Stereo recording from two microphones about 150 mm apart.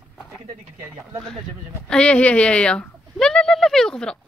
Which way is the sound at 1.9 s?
5° left (ahead or behind).